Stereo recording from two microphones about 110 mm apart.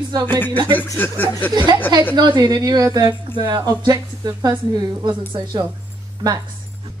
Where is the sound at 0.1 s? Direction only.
40° right (ahead or behind).